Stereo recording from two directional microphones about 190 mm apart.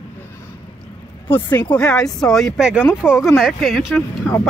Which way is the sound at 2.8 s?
10° left (ahead or behind).